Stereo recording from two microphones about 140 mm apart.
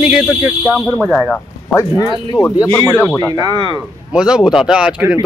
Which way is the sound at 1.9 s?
30° left (ahead or behind).